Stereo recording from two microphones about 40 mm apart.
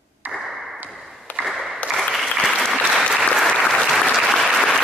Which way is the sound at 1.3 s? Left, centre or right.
Left.